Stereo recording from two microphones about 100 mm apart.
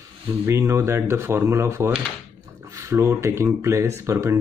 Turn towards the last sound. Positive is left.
turn(degrees=-30)  # may be behind; listen again after turning